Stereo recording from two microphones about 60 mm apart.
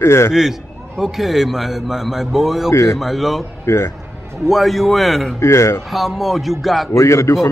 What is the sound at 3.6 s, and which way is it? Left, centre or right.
Speech, left.